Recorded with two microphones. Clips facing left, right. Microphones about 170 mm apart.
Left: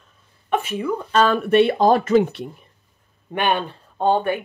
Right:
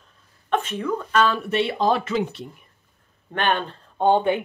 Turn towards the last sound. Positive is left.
turn(degrees=-20)  # may be behind; listen again after turning